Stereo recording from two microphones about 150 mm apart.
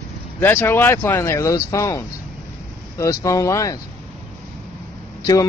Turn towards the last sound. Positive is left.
turn(degrees=25)  # may be behind; listen again after turning